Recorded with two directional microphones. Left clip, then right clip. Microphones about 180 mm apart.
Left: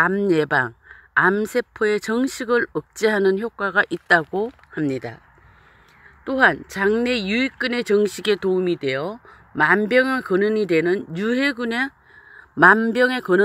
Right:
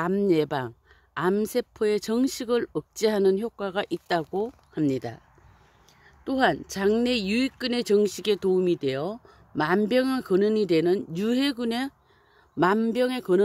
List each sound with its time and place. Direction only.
0.0 s speech: 15° right (ahead or behind)
4.7 s speech: 20° right (ahead or behind)
6.2 s speech: 20° right (ahead or behind)